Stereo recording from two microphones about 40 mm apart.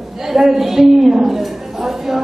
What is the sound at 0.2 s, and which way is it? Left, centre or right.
A woman's voice, centre.